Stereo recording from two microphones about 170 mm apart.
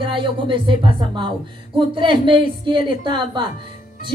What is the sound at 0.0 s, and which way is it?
A woman's voice, 30° right (ahead or behind).